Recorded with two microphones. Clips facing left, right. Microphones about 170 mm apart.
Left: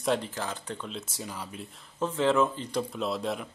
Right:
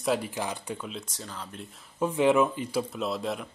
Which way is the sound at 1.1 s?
10° left (ahead or behind).